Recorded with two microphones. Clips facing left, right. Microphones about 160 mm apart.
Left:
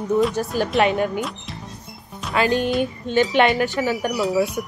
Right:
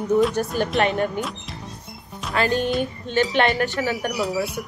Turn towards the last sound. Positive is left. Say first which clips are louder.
# left 4 dB
turn(degrees=10)  # may be behind; listen again after turning